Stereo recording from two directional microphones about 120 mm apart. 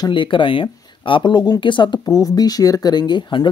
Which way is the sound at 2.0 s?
30° left (ahead or behind).